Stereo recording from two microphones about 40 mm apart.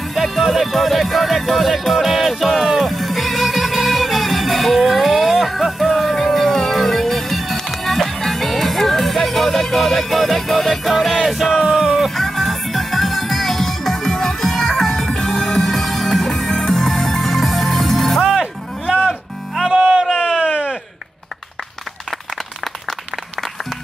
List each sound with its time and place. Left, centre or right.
0.1 s music: centre
12.0 s music: centre
18.2 s music: centre
19.0 s music: centre
19.8 s a sound: right